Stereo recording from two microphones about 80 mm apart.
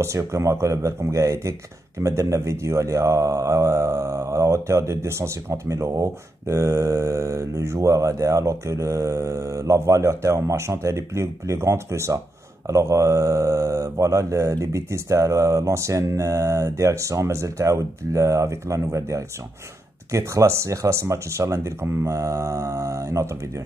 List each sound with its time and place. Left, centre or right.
0.0 s speech: right